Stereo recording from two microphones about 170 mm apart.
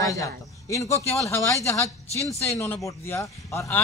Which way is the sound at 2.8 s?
15° left (ahead or behind).